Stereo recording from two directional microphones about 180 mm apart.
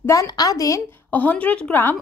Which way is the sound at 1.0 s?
10° left (ahead or behind).